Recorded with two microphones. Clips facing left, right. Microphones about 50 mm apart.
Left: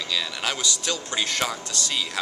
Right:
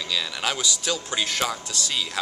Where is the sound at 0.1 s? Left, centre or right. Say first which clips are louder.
Right 1 dB; centre.